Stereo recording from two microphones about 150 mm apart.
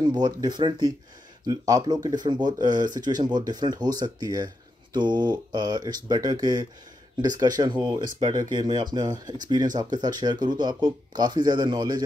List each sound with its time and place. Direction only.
0.0 s speech: 30° right (ahead or behind)